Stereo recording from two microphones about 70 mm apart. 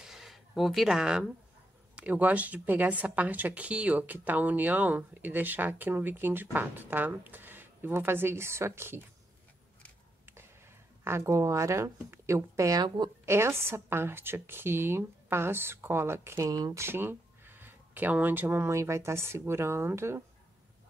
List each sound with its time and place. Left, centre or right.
0.0 s a sound: centre
2.0 s speech: right
11.1 s a woman's voice: right
12.8 s a woman's voice: right
13.2 s speech: right
16.4 s speech: right
16.7 s speech: right
18.7 s speech: right